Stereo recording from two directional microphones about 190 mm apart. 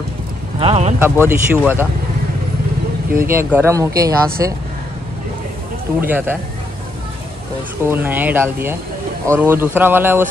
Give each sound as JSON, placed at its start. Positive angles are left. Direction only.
{"t": 0.6, "sound": "speech", "side_deg": -30}
{"t": 0.9, "sound": "speech", "side_deg": -10}
{"t": 3.2, "sound": "speech", "side_deg": -10}
{"t": 5.9, "sound": "speech", "side_deg": -10}
{"t": 7.8, "sound": "speech", "side_deg": -10}